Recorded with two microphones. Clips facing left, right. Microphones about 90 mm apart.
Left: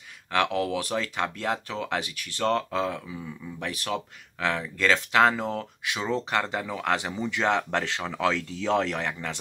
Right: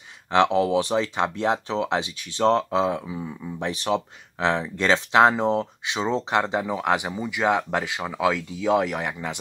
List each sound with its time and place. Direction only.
0.3 s speech: 25° right (ahead or behind)